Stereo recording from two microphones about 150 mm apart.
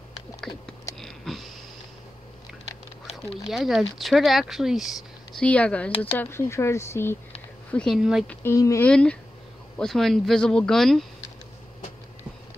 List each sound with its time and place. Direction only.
0.9 s a sound: centre (ahead or behind)
3.4 s speech: centre (ahead or behind); by 7.2 s 15° left (ahead or behind)
7.7 s speech: centre (ahead or behind)
8.3 s speech: 15° left (ahead or behind)
8.8 s speech: 5° left (ahead or behind)